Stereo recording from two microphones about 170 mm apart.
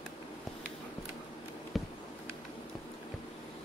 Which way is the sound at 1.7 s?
Centre (ahead or behind).